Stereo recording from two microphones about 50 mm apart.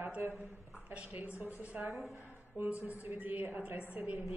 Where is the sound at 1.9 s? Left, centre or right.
Centre.